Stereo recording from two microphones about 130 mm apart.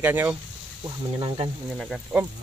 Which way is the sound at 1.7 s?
Centre (ahead or behind).